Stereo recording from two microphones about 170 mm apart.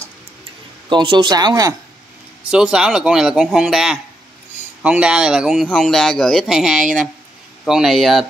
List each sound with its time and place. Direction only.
0.8 s speech: 25° right (ahead or behind)
2.5 s a man's voice: 5° right (ahead or behind)